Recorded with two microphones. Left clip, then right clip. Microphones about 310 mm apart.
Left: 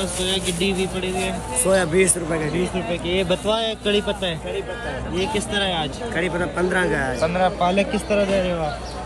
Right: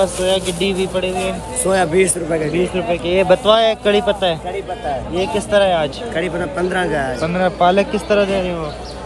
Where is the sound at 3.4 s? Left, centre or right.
Right.